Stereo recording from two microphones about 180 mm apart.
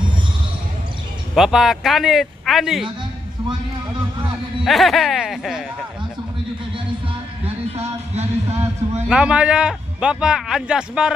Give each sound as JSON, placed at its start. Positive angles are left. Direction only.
{"t": 1.3, "sound": "a man's voice", "side_deg": 0}
{"t": 4.6, "sound": "a man's voice", "side_deg": 0}
{"t": 7.4, "sound": "a sound", "side_deg": -35}
{"t": 9.1, "sound": "a man's voice", "side_deg": -5}